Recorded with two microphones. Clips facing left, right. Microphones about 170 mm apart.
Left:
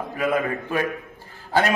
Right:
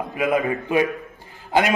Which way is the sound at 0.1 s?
15° right (ahead or behind).